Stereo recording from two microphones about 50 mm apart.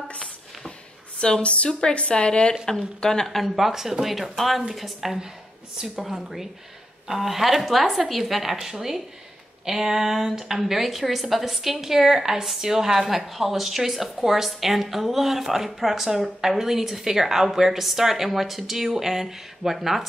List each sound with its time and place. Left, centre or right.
1.2 s a woman's voice: left; by 20.1 s centre